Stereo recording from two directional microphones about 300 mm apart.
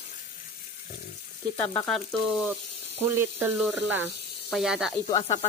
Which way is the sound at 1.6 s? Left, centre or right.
Centre.